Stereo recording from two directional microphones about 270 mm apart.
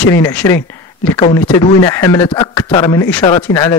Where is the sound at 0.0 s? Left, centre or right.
Centre.